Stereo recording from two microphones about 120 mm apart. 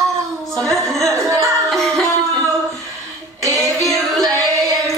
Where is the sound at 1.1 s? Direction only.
25° right (ahead or behind).